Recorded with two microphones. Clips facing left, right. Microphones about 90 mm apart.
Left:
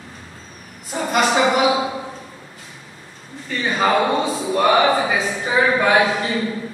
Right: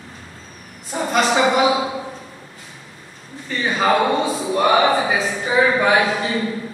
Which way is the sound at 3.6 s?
5° right (ahead or behind).